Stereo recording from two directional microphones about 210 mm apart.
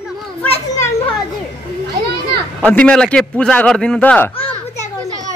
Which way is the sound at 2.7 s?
5° left (ahead or behind).